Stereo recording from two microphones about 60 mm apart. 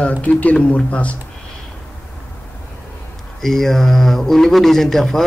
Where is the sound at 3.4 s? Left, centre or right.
Centre.